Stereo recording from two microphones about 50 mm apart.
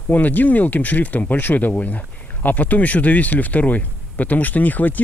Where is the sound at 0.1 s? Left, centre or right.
Left.